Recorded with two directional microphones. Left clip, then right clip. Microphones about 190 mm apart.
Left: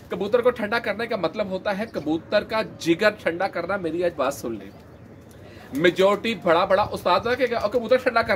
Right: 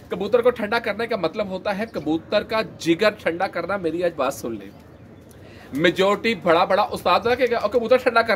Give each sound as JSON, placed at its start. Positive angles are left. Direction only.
{"t": 0.1, "sound": "speech", "side_deg": -15}
{"t": 5.8, "sound": "speech", "side_deg": -20}